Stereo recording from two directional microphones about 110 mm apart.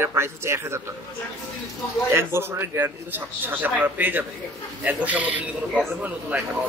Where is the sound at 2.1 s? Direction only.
25° right (ahead or behind).